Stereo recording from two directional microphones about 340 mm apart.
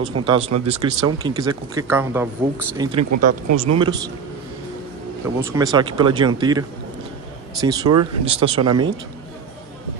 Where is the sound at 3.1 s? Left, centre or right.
Right.